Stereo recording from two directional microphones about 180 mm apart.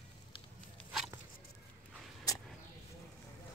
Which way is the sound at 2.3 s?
20° left (ahead or behind).